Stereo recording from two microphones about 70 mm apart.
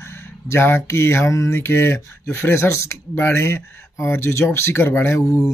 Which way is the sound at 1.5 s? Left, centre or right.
Left.